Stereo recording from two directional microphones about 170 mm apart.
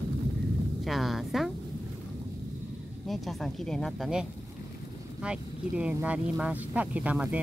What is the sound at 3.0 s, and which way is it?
Speech, centre (ahead or behind).